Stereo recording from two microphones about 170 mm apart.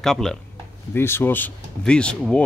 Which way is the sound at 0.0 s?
5° left (ahead or behind).